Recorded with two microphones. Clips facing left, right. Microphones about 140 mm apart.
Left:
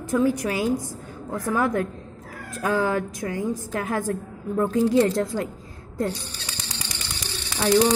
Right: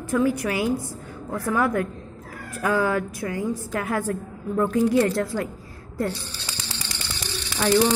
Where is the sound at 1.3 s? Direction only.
15° left (ahead or behind).